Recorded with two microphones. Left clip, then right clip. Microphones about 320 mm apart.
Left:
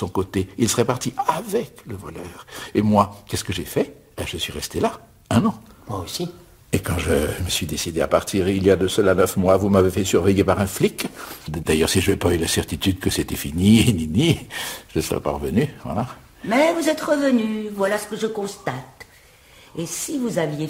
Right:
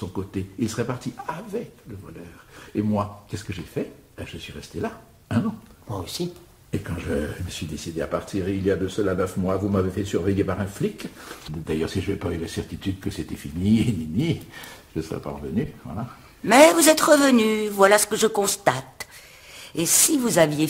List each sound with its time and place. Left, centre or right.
0.1 s speech: left
2.7 s speech: left
5.9 s speech: centre
6.7 s speech: left
16.4 s a man's voice: right